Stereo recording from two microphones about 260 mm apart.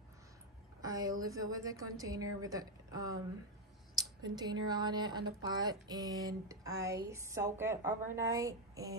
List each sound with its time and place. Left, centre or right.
0.7 s a woman's voice: centre